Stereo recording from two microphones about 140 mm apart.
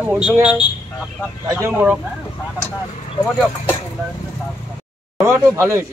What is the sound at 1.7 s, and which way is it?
Speech, 10° right (ahead or behind).